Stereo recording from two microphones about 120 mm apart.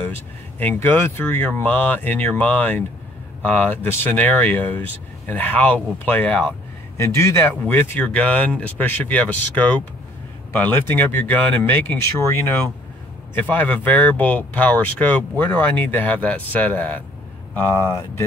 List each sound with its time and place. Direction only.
0.0 s speech: 15° left (ahead or behind)
7.0 s speech: 25° left (ahead or behind)